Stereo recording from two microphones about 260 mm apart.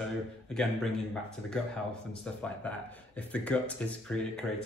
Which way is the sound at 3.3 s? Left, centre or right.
Centre.